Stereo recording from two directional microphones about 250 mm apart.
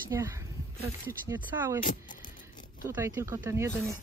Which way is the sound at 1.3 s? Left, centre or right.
Centre.